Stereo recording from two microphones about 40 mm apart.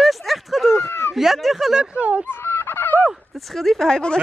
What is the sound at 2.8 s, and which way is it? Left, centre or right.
Fowl, left.